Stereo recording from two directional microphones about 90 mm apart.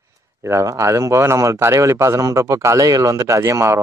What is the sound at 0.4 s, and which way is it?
Speech, 35° right (ahead or behind).